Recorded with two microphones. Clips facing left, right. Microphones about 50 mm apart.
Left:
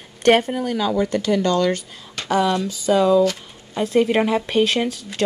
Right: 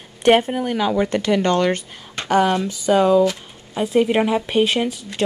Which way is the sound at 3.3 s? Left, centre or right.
Centre.